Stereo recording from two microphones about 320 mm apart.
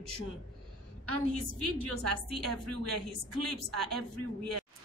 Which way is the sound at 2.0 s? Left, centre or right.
Right.